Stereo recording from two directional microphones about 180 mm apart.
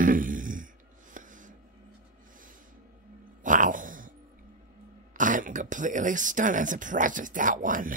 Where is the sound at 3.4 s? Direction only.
45° right (ahead or behind).